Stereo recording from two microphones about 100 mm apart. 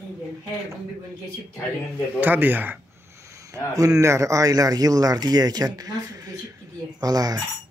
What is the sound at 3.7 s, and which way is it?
A man's voice, 35° right (ahead or behind).